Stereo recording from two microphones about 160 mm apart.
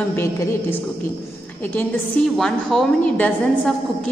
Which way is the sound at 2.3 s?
5° left (ahead or behind).